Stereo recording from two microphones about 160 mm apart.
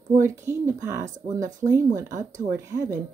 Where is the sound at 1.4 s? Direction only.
50° right (ahead or behind).